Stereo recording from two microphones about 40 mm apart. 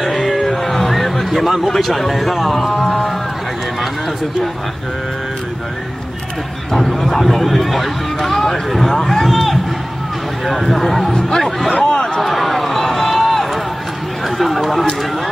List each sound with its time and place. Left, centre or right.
0.0 s music: centre
0.5 s a sound: centre
1.7 s speech: centre
6.7 s speech: centre
11.1 s speech: centre
11.8 s a sound: centre
12.2 s run: centre
14.2 s speech: centre